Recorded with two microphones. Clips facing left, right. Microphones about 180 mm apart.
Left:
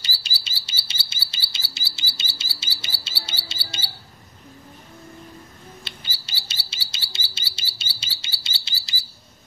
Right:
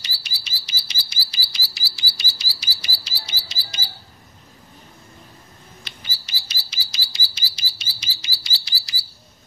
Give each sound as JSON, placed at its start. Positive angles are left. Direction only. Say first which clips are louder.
{"t": 0.0, "sound": "chirp", "louder": "left 2 dB", "side_deg": 30}
{"t": 5.9, "sound": "chirp", "louder": "left 1 dB", "side_deg": 30}
{"t": 8.6, "sound": "bird", "louder": "right 2 dB", "side_deg": 25}